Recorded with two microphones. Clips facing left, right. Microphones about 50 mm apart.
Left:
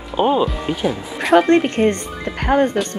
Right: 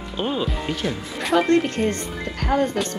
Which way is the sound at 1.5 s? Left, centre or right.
Left.